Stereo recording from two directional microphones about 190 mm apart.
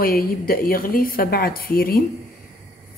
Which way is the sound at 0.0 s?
50° left (ahead or behind).